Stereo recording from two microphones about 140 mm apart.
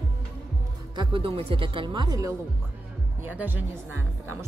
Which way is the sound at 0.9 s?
40° right (ahead or behind).